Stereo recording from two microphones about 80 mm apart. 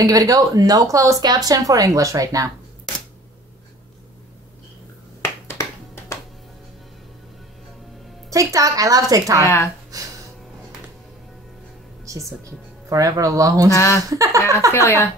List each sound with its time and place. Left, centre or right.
0.0 s a woman's voice: right
1.2 s a woman's voice: right
5.2 s finger snapping: left
8.3 s a woman's voice: right
9.4 s speech: left
9.9 s a sound: right
12.9 s a woman's voice: right
13.7 s speech: left
14.1 s a woman's voice: right
14.7 s speech: left